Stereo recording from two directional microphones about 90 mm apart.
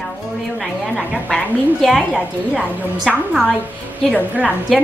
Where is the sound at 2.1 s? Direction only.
20° right (ahead or behind).